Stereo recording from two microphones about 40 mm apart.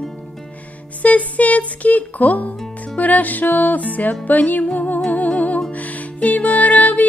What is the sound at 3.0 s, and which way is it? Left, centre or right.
Music, left.